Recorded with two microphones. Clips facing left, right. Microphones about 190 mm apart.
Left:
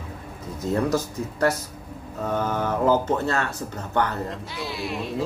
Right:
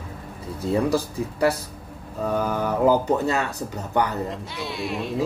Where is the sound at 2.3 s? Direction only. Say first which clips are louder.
Right 1 dB; 10° right (ahead or behind).